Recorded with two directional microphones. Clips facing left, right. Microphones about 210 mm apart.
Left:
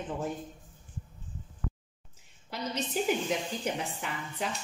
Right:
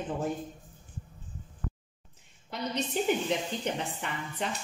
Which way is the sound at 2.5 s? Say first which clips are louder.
Right 1 dB; 5° left (ahead or behind).